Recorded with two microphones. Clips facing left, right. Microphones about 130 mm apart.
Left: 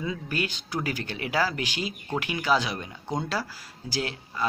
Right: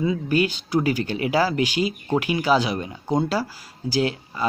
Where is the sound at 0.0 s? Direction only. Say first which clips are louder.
Right 9 dB; 15° right (ahead or behind).